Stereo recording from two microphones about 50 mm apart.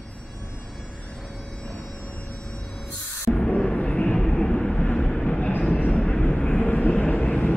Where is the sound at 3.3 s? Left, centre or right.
Centre.